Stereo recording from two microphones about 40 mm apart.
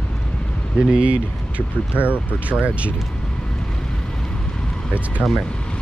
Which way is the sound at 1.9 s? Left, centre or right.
Right.